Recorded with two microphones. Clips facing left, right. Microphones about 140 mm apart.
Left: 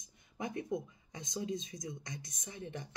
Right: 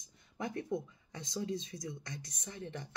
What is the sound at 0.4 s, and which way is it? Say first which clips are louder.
Speech: even; 20° left (ahead or behind).